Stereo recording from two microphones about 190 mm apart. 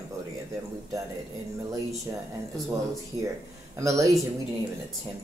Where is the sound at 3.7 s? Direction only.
15° right (ahead or behind).